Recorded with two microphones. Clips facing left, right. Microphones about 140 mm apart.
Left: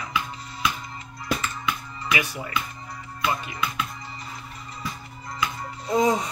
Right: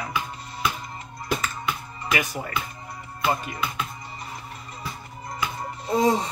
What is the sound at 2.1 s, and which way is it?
Speech, 45° right (ahead or behind).